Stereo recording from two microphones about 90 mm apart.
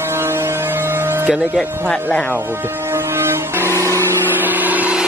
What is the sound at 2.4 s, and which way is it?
Vehicle, 25° right (ahead or behind).